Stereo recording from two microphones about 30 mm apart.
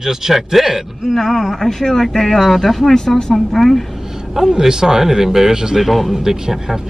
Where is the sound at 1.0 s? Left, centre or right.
Centre.